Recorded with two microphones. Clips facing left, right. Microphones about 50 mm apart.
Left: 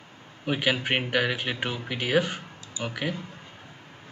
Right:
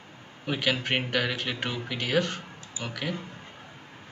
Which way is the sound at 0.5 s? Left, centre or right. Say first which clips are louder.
Left 2 dB; centre.